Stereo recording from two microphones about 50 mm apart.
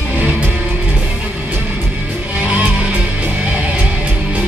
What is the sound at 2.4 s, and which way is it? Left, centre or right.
Music, right.